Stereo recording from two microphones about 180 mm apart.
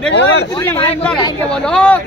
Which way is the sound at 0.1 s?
80° left.